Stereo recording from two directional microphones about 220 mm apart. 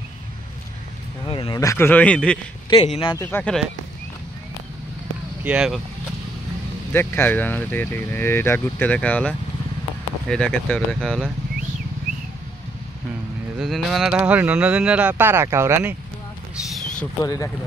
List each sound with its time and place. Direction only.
1.2 s speech: 20° left (ahead or behind); by 2.3 s 5° left (ahead or behind)
2.8 s speech: 25° left (ahead or behind)
3.2 s speech: 10° left (ahead or behind)
5.4 s speech: 5° right (ahead or behind)
6.9 s speech: 10° left (ahead or behind)
13.6 s speech: centre (ahead or behind)
17.2 s speech: 15° left (ahead or behind)